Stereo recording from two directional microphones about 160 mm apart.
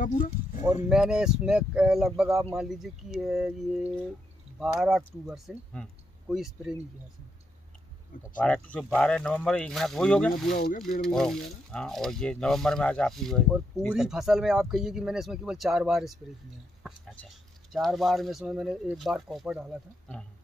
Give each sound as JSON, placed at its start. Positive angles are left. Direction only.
{"t": 0.8, "sound": "speech", "side_deg": -5}
{"t": 8.4, "sound": "speech", "side_deg": 10}
{"t": 10.5, "sound": "speech", "side_deg": 70}
{"t": 10.8, "sound": "speech", "side_deg": 5}